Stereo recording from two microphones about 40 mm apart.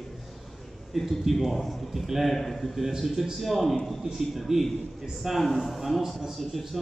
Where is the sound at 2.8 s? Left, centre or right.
Centre.